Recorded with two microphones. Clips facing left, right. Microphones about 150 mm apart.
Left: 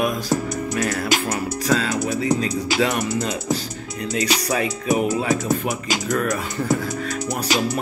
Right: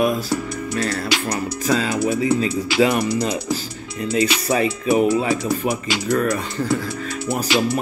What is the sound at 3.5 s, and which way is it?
Music, centre (ahead or behind).